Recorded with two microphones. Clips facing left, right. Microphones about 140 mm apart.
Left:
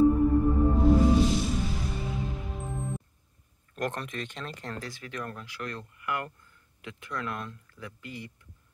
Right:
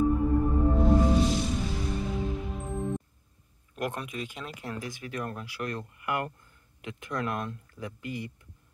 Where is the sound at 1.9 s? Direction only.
Centre (ahead or behind).